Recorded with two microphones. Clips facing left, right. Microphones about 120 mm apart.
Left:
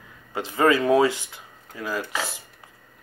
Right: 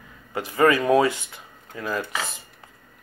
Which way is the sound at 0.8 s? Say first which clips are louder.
Even; 20° left (ahead or behind).